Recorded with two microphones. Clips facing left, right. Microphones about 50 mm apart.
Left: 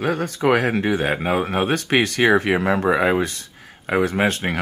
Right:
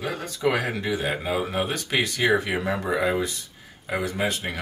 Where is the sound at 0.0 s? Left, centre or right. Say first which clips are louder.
Left 5 dB; left.